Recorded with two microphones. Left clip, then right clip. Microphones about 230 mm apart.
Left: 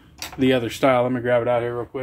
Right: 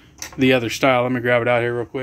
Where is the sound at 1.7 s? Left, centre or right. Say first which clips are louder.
Right 3 dB; right.